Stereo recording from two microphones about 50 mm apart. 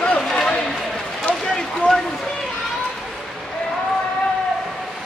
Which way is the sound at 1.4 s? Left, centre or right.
Centre.